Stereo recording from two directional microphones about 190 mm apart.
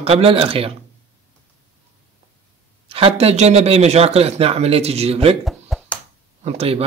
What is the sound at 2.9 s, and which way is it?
Speech, 30° right (ahead or behind).